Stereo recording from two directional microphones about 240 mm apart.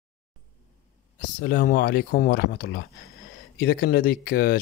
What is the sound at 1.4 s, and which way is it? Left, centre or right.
Speech, left.